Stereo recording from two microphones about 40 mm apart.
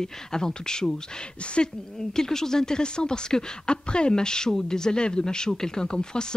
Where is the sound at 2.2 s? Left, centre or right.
Centre.